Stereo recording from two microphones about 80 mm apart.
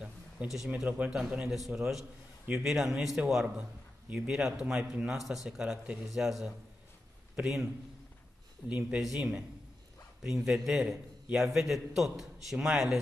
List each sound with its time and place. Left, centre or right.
0.0 s a sound: centre
0.8 s a man's voice: centre
8.6 s a man's voice: centre